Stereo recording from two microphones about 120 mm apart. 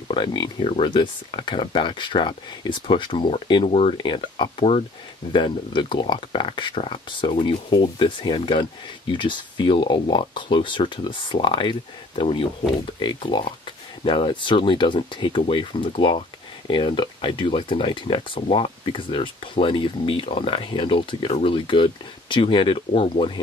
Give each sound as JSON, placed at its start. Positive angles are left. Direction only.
{"t": 0.1, "sound": "speech", "side_deg": 40}
{"t": 3.6, "sound": "speech", "side_deg": 60}
{"t": 4.0, "sound": "speech", "side_deg": 40}